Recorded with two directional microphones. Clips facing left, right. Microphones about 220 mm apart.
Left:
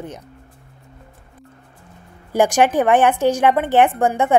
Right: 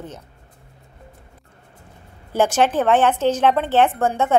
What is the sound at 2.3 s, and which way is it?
A woman's voice, 15° left (ahead or behind).